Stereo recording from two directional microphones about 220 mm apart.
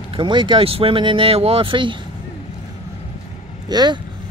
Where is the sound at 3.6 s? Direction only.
20° right (ahead or behind).